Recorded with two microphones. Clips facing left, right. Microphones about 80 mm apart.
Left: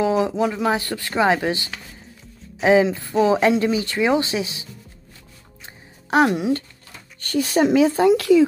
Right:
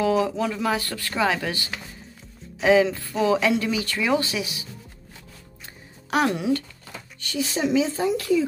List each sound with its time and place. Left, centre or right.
0.2 s speech: centre
6.0 s speech: left
7.2 s speech: left